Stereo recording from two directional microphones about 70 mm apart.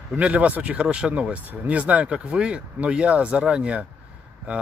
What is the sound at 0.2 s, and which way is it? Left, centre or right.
Speech, right.